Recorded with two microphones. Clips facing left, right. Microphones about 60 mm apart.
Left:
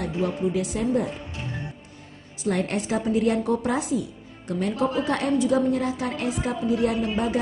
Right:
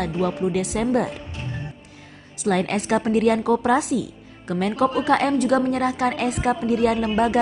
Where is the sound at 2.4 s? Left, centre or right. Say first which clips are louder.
Right 3 dB; right.